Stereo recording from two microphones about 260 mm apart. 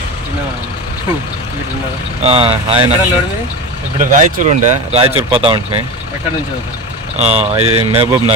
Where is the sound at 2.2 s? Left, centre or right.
Right.